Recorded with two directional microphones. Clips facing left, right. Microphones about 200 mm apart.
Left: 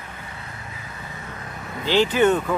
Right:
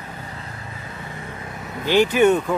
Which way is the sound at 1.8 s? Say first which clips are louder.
Right 2 dB; 15° right (ahead or behind).